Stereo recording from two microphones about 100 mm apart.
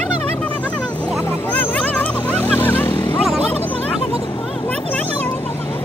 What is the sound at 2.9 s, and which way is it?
Vehicle, 50° left (ahead or behind).